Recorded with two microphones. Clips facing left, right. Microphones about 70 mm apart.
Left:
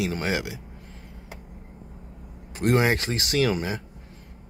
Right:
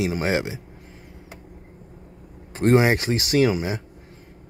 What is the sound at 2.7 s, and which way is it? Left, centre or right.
Speech, right.